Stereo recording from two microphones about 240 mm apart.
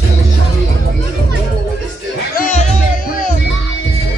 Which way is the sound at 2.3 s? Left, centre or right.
Left.